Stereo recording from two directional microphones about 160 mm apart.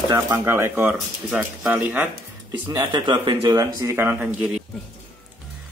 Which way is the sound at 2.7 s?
25° right (ahead or behind).